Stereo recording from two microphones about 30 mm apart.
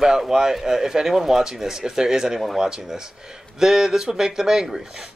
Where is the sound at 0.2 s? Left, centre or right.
Centre.